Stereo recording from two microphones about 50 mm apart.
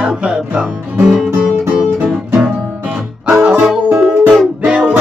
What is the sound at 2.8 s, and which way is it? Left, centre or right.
Music, right.